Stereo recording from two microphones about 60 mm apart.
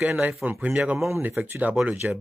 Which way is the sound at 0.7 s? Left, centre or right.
Centre.